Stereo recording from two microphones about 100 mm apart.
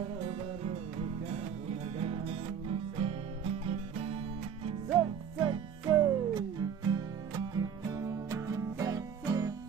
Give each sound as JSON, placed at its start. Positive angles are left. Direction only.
{"t": 2.0, "sound": "music", "side_deg": -75}
{"t": 4.9, "sound": "music", "side_deg": -55}
{"t": 5.9, "sound": "music", "side_deg": -40}